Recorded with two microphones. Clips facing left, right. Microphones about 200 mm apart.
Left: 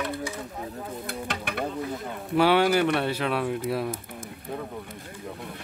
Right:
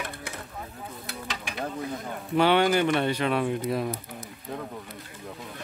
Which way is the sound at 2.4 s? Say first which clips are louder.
Left 1 dB; 5° left (ahead or behind).